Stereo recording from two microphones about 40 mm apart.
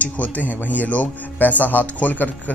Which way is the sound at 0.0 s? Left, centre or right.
Left.